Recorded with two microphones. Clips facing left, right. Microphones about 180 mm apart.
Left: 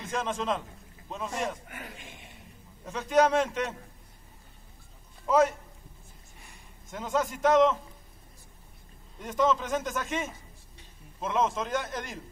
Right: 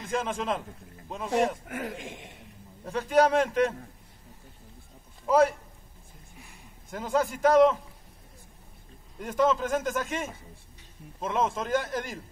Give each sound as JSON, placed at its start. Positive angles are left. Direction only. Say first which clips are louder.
{"t": 0.2, "sound": "a man's voice", "louder": "even", "side_deg": -5}
{"t": 1.7, "sound": "speech", "louder": "right 9 dB", "side_deg": -90}
{"t": 2.8, "sound": "a man's voice", "louder": "right 1 dB", "side_deg": 0}
{"t": 5.2, "sound": "a man's voice", "louder": "right 2 dB", "side_deg": -5}
{"t": 6.9, "sound": "a man's voice", "louder": "right 2 dB", "side_deg": 0}
{"t": 9.2, "sound": "a man's voice", "louder": "right 2 dB", "side_deg": -5}